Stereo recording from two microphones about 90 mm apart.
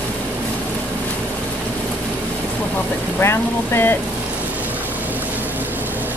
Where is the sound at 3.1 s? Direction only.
25° left (ahead or behind).